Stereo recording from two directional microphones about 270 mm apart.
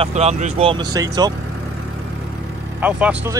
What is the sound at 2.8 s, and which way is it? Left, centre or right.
Speech, centre.